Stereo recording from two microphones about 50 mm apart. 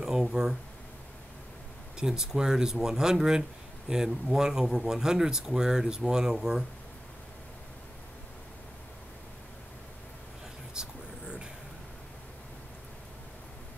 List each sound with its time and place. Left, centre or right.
0.0 s speech: centre
2.0 s speech: centre
10.7 s vehicle: centre